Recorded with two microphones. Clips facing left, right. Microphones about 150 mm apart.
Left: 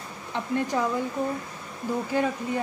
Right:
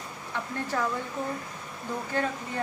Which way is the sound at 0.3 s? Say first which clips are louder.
Left 5 dB; 15° left (ahead or behind).